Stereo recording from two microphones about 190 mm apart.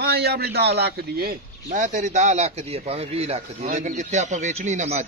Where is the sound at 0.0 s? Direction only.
55° right (ahead or behind).